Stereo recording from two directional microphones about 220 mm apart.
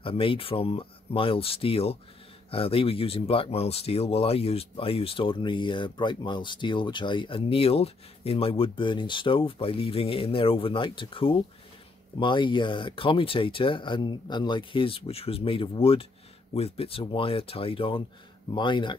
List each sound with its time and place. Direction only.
0.0 s speech: 25° left (ahead or behind)